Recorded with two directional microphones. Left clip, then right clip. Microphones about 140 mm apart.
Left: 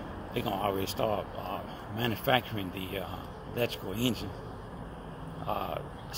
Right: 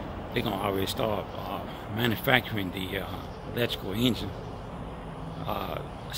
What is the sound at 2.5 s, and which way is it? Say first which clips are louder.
Speech: right 4 dB; 70° right (ahead or behind).